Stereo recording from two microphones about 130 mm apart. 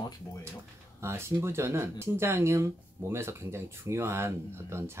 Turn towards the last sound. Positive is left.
turn(degrees=-20)  # may be behind; listen again after turning